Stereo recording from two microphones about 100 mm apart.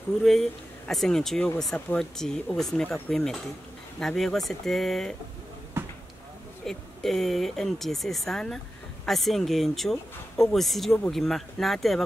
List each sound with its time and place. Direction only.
0.2 s speech: 5° left (ahead or behind)
5.8 s a sound: 25° right (ahead or behind)
6.6 s speech: 5° left (ahead or behind)